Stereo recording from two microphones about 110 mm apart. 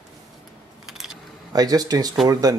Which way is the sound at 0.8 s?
5° right (ahead or behind).